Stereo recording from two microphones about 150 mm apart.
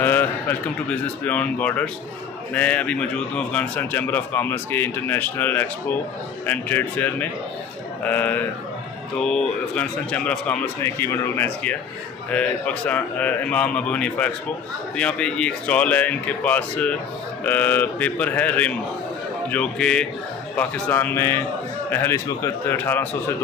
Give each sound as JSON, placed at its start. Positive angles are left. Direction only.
{"t": 0.0, "sound": "a man's voice", "side_deg": 15}